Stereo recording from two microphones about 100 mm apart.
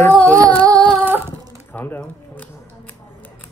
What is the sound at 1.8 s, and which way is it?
Squish, 20° left (ahead or behind).